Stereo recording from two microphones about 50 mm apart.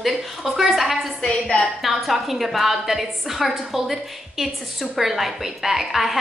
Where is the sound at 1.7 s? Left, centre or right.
Centre.